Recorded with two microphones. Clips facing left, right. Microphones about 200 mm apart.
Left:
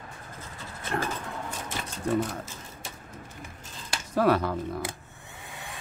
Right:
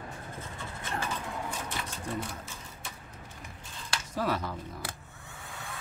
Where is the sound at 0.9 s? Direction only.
70° left (ahead or behind).